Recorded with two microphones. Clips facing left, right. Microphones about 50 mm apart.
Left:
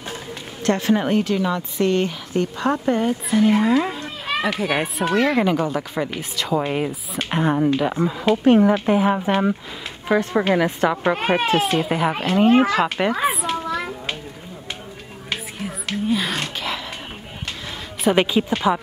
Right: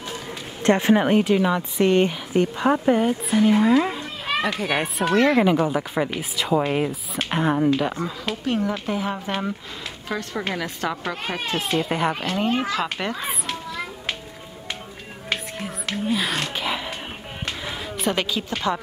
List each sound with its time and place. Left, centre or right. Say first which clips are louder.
0.3 s a woman's voice: right 2 dB; right; by 7.9 s centre
7.9 s a woman's voice: left 8 dB; centre
8.5 s a woman's voice: left 9 dB; left
11.1 s a child's voice: left 8 dB; left
11.8 s speech: left 2 dB; centre
12.4 s a child's voice: left 9 dB; left
12.7 s speech: left 6 dB; centre
13.3 s a child's voice: left 5 dB; centre
15.6 s music: left 2 dB; centre
18.1 s a woman's voice: left 7 dB; left